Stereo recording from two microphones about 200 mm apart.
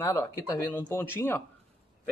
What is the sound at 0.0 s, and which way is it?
Speech, 15° left (ahead or behind).